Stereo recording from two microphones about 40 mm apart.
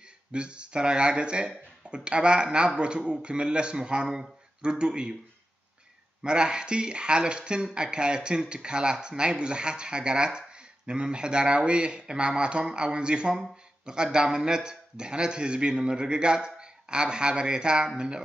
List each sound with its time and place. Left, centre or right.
0.3 s a man's voice: right
6.2 s a man's voice: right